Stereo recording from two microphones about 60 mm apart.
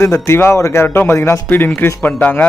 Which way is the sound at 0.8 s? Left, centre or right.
Left.